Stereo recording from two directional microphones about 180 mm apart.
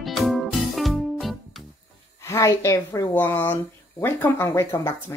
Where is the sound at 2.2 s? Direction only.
15° left (ahead or behind).